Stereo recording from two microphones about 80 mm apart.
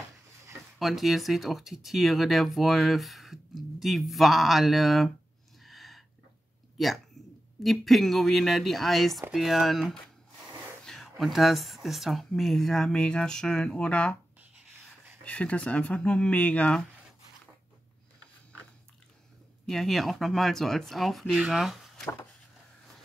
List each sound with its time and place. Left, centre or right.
0.7 s speech: centre
5.6 s a sound: centre
7.2 s a sound: centre
7.6 s speech: centre
15.2 s speech: centre
19.6 s speech: centre